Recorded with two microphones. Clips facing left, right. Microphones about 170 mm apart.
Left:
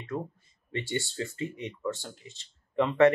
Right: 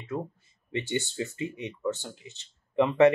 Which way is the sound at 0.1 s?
5° right (ahead or behind).